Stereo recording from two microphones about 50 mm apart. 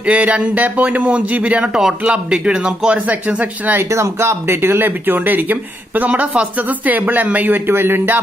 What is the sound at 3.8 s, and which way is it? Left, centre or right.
Speech, right.